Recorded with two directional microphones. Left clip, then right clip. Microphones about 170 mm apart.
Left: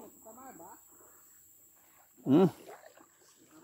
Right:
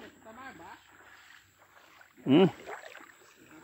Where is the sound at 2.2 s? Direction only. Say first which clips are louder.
Right 2 dB; 20° left (ahead or behind).